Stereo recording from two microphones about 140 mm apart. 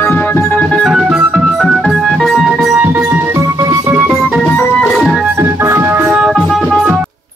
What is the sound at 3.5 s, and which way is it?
Music, 25° right (ahead or behind).